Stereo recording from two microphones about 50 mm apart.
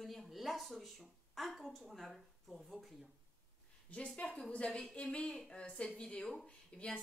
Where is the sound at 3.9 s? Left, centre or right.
Left.